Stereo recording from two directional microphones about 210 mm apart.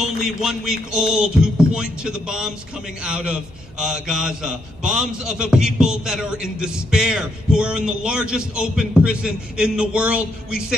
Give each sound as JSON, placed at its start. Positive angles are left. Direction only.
{"t": 0.0, "sound": "a man's voice", "side_deg": -5}